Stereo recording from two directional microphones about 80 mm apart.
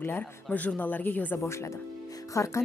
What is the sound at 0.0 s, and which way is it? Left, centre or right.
Speech, left.